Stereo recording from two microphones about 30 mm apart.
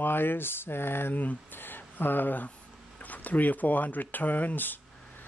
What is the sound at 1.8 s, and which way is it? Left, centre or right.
Speech, left.